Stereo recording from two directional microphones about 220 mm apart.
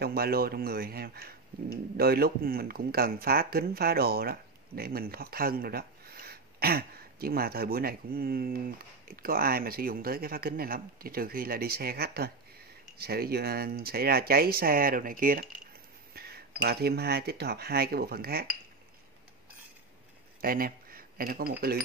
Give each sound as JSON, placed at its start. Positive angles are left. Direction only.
{"t": 0.0, "sound": "speech", "side_deg": -45}
{"t": 20.3, "sound": "speech", "side_deg": -40}